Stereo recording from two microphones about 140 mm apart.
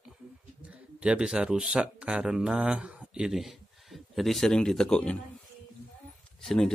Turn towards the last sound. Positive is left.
turn(degrees=5)  # may be behind; listen again after turning